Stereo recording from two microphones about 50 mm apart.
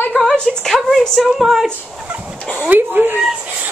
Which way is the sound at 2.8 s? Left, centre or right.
Right.